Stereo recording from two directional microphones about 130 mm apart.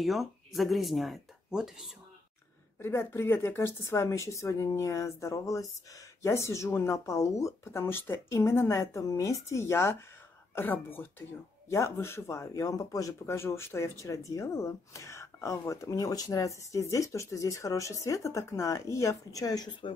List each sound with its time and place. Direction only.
0.0 s speech: centre (ahead or behind)
2.8 s speech: 20° left (ahead or behind); by 19.9 s 35° left (ahead or behind)